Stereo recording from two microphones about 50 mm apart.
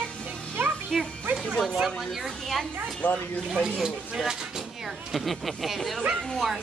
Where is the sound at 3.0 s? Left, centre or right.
Left.